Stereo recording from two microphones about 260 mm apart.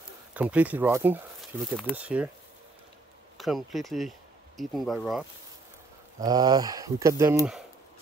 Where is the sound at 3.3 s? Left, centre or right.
Centre.